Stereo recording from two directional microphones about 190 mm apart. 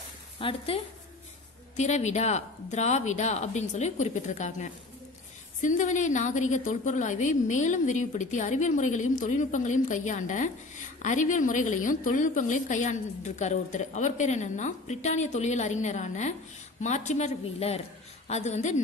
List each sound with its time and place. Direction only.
0.4 s a woman's voice: 30° left (ahead or behind)
1.8 s a woman's voice: 40° left (ahead or behind)